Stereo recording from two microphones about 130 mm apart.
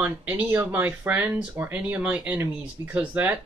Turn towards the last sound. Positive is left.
turn(degrees=-10)  # may be behind; listen again after turning